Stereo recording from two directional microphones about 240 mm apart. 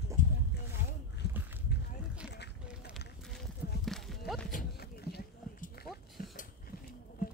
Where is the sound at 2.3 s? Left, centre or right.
Left.